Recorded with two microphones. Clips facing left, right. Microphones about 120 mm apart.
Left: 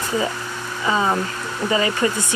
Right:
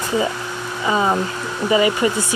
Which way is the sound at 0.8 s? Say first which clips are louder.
Right 2 dB; 15° right (ahead or behind).